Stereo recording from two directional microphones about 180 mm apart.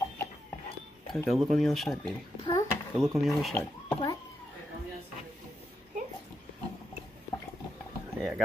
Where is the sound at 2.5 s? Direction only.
25° left (ahead or behind).